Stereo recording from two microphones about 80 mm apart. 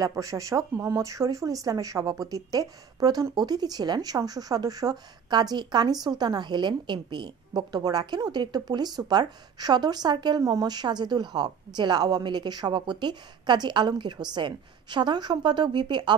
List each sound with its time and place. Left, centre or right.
0.0 s speech: right
10.4 s speech: right